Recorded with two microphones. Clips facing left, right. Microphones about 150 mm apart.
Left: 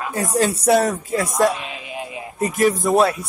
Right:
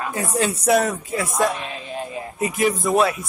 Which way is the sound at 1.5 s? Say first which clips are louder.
Even; 10° left (ahead or behind).